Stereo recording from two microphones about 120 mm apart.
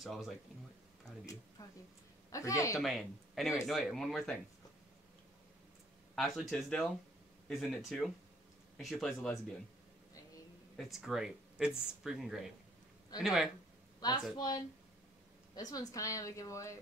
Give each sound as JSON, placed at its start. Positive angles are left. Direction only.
{"t": 0.0, "sound": "speech", "side_deg": 0}
{"t": 1.6, "sound": "a woman's voice", "side_deg": 30}
{"t": 2.8, "sound": "speech", "side_deg": 0}
{"t": 6.1, "sound": "speech", "side_deg": 0}
{"t": 10.8, "sound": "speech", "side_deg": 0}
{"t": 14.3, "sound": "a woman's voice", "side_deg": 35}